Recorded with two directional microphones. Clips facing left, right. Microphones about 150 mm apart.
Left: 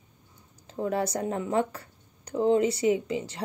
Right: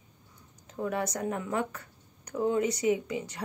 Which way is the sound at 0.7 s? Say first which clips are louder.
Left 3 dB; 30° left (ahead or behind).